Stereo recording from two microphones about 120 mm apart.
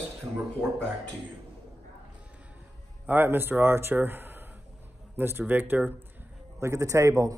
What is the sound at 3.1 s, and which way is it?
Speech, 15° right (ahead or behind).